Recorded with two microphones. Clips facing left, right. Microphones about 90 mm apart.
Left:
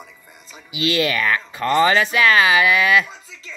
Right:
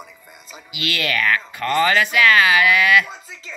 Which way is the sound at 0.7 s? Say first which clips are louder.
Left 5 dB; 25° left (ahead or behind).